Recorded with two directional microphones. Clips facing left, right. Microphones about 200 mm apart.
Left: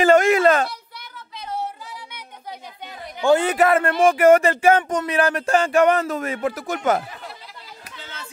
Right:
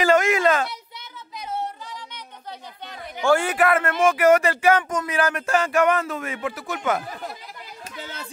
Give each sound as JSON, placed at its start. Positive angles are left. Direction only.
{"t": 0.1, "sound": "a sound", "side_deg": 30}
{"t": 3.2, "sound": "speech", "side_deg": 20}
{"t": 8.0, "sound": "chatter", "side_deg": -40}